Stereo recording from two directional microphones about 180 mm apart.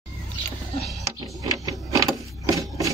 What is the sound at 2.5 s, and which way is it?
Rub, 20° right (ahead or behind).